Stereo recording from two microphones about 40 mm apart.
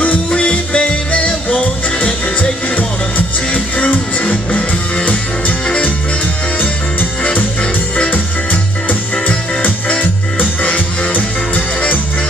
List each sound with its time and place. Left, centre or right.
0.0 s music: left
3.5 s music: left
4.5 s music: left
8.1 s music: left
10.6 s music: left